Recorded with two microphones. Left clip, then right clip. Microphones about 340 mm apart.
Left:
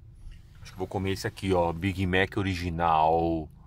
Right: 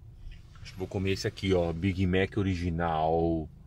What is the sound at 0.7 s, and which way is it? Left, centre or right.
Speech, left.